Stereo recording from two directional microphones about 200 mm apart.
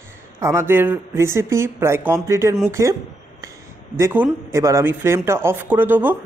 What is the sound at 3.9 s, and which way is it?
Speech, 15° right (ahead or behind).